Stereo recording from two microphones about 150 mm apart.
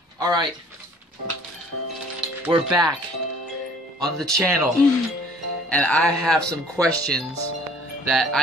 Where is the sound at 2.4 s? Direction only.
10° right (ahead or behind).